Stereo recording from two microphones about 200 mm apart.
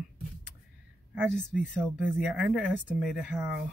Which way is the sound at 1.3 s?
40° left (ahead or behind).